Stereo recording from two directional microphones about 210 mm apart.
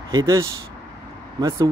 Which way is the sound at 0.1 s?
15° right (ahead or behind).